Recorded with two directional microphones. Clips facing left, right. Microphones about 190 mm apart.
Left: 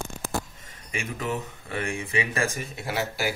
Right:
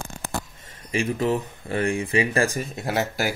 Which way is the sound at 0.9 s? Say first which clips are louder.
Right 8 dB; 35° right (ahead or behind).